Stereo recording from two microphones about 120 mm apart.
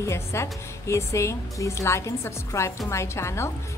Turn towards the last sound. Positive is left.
turn(degrees=25)  # may be behind; listen again after turning